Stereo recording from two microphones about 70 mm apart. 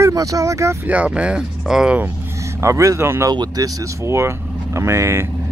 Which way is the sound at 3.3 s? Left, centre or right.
Right.